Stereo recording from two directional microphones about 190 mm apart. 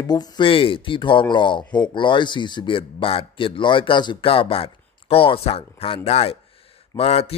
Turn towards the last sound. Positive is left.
turn(degrees=30)  # may be behind; listen again after turning